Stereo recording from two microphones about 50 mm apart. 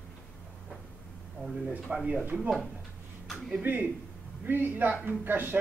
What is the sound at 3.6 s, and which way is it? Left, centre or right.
A man's voice, right.